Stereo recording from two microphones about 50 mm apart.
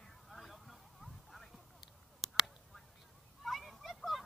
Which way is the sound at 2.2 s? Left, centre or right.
Centre.